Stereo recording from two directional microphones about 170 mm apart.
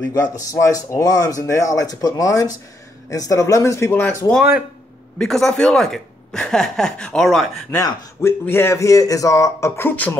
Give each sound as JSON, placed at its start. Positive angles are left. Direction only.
{"t": 0.1, "sound": "speech", "side_deg": 20}
{"t": 5.2, "sound": "speech", "side_deg": 0}
{"t": 7.7, "sound": "speech", "side_deg": 15}